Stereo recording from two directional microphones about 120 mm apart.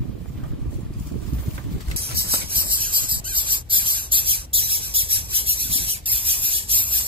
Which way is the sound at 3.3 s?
45° right (ahead or behind).